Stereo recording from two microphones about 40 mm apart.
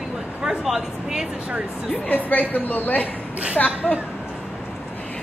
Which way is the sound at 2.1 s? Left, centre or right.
Left.